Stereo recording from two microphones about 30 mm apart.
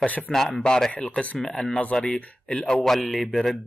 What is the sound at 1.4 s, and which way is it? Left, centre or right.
Speech, left.